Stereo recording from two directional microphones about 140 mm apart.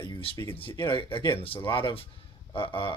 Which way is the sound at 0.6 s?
35° left (ahead or behind).